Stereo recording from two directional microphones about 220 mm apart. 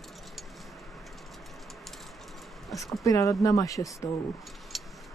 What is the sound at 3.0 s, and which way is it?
Speech, 15° left (ahead or behind).